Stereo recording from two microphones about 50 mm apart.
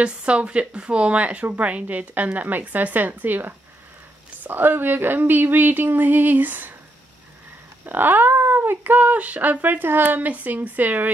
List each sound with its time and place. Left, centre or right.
0.0 s speech: right
7.8 s speech: right